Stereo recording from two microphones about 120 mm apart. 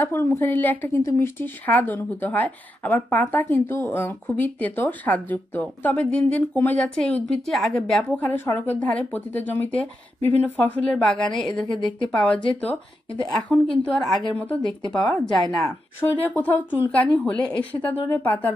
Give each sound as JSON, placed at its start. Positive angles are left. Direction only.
{"t": 0.0, "sound": "a woman's voice", "side_deg": 20}
{"t": 15.1, "sound": "speech", "side_deg": 25}
{"t": 16.2, "sound": "speech", "side_deg": 15}